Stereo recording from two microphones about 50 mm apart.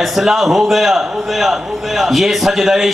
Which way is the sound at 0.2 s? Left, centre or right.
Centre.